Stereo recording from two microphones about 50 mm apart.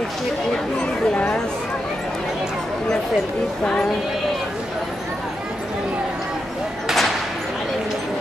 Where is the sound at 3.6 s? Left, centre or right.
Centre.